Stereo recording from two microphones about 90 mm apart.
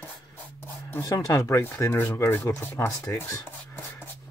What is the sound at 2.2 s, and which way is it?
Speech, 35° left (ahead or behind).